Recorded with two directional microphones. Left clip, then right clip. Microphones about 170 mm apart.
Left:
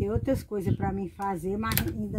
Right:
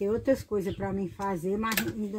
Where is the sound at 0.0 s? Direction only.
40° left (ahead or behind).